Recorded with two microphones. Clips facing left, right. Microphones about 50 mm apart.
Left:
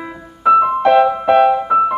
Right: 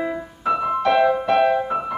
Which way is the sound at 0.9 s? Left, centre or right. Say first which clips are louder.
Left 5 dB; left.